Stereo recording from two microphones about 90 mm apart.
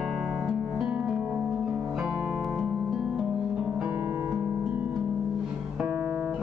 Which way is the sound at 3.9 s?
25° right (ahead or behind).